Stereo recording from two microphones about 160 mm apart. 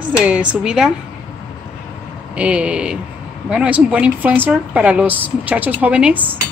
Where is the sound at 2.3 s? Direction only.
10° right (ahead or behind).